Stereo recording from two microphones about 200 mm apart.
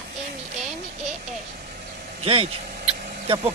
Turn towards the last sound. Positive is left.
turn(degrees=-30)  # may be behind; listen again after turning